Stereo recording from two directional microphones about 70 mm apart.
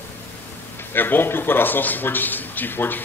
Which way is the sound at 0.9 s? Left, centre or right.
Left.